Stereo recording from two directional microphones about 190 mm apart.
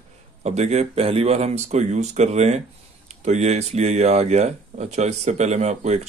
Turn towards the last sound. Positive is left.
turn(degrees=-35)  # may be behind; listen again after turning